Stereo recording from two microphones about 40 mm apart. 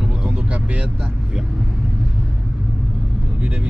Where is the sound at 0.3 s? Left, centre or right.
Right.